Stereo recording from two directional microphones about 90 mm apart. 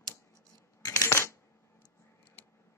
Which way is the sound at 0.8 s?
30° left (ahead or behind).